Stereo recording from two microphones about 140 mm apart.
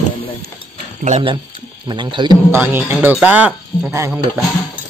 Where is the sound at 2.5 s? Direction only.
15° right (ahead or behind).